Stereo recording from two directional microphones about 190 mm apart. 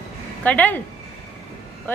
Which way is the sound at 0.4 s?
10° left (ahead or behind).